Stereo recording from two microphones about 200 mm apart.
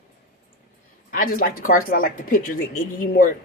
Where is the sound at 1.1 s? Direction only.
45° left (ahead or behind).